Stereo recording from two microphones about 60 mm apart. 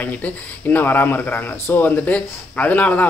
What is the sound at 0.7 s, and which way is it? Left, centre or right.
Speech, left.